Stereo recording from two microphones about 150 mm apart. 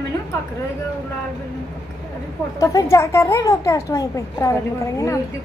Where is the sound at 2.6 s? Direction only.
20° left (ahead or behind).